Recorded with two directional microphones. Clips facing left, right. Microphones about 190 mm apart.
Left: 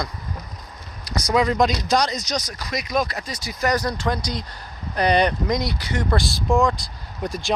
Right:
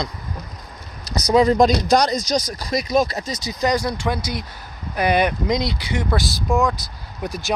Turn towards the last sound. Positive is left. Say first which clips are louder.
# even
turn(degrees=0)  # may be behind; listen again after turning